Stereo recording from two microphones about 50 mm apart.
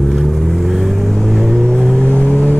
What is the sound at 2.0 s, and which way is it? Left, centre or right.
Vehicle, left.